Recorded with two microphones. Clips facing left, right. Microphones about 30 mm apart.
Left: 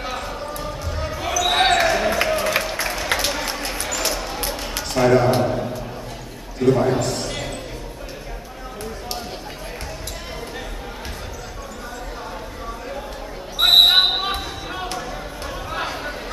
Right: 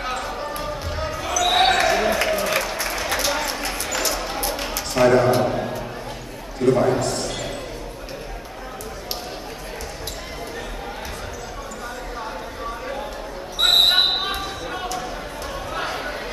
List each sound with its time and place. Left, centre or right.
0.0 s basketball bounce: centre
1.2 s basketball bounce: centre
2.3 s applause: centre
3.1 s a sound: left
5.0 s speech: centre
5.4 s a sound: centre
6.6 s a man's voice: centre
13.6 s basketball bounce: centre
15.0 s a sound: centre